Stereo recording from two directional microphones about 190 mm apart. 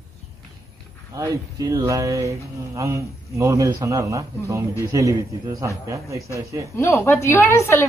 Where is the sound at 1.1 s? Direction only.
20° right (ahead or behind).